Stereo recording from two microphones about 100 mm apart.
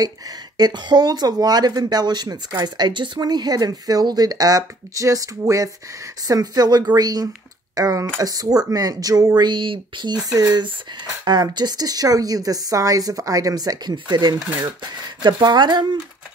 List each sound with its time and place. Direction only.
0.6 s speech: 45° right (ahead or behind)